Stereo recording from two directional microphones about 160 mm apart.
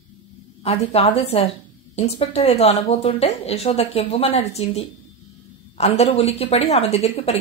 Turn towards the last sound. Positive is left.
turn(degrees=40)  # may be behind; listen again after turning